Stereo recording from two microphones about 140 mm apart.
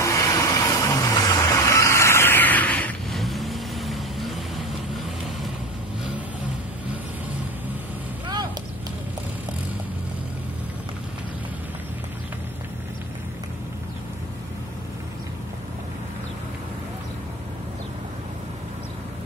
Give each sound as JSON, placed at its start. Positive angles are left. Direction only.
{"t": 0.0, "sound": "vehicle", "side_deg": 20}